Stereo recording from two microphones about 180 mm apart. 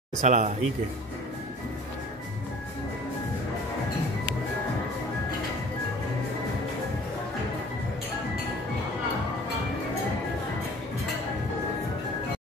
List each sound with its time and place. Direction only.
0.2 s speech: 45° right (ahead or behind)